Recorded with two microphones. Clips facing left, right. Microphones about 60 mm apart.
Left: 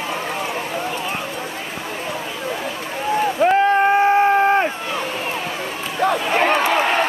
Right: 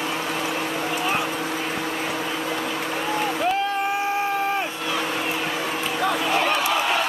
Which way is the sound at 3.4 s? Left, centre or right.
Left.